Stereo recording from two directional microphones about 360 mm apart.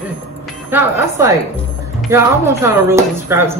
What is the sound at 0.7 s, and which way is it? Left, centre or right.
Speech, centre.